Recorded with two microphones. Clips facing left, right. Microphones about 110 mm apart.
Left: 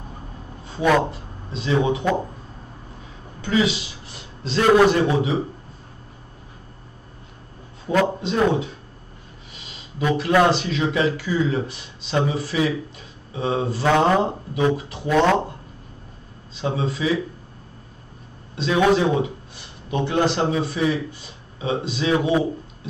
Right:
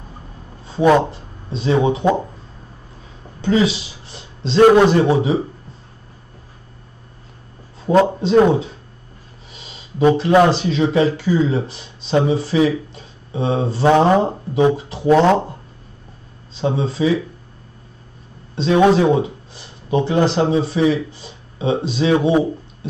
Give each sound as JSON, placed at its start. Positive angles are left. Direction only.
{"t": 0.7, "sound": "speech", "side_deg": -30}
{"t": 3.3, "sound": "a man's voice", "side_deg": -30}
{"t": 7.8, "sound": "speech", "side_deg": -30}
{"t": 9.9, "sound": "speech", "side_deg": -30}
{"t": 16.6, "sound": "speech", "side_deg": -30}
{"t": 18.5, "sound": "a man's voice", "side_deg": -30}